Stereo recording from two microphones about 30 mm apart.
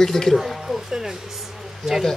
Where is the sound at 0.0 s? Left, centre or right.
Centre.